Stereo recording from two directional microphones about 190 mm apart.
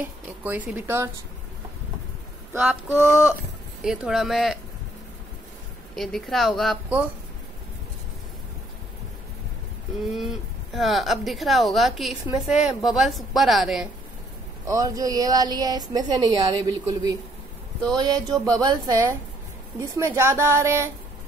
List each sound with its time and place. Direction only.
0.0 s speech: 10° right (ahead or behind)
2.5 s speech: 10° right (ahead or behind)
3.8 s a woman's voice: 5° right (ahead or behind)
5.9 s a woman's voice: centre (ahead or behind)
10.0 s a woman's voice: centre (ahead or behind)
14.7 s a woman's voice: 20° right (ahead or behind)